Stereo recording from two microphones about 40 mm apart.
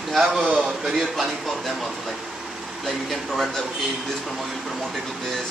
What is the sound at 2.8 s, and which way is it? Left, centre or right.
Speech, centre.